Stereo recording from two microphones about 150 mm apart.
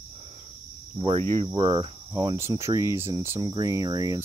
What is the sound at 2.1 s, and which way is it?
Speech, 20° right (ahead or behind).